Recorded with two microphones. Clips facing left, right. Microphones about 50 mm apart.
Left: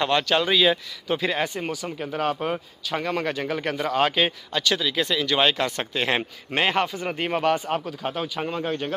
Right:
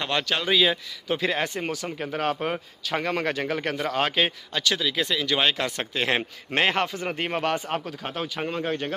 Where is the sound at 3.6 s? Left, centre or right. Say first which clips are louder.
Left 3 dB; centre.